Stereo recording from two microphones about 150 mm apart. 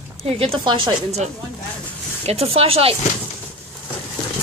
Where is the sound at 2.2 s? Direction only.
40° right (ahead or behind).